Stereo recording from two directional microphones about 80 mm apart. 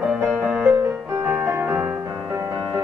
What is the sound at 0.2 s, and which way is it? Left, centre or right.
Music, centre.